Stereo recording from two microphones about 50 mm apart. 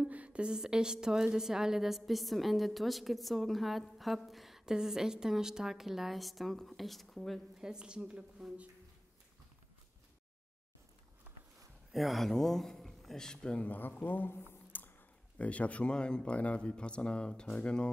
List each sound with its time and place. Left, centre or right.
0.0 s a woman's voice: right; by 7.4 s centre
7.5 s a woman's voice: centre
11.9 s speech: centre
13.6 s speech: left
14.7 s a sound: left
15.3 s speech: left